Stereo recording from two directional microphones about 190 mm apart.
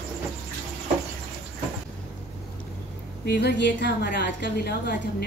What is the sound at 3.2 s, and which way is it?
A woman's voice, 60° left (ahead or behind).